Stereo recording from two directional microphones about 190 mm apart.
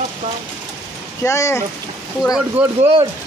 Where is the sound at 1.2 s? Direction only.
15° left (ahead or behind).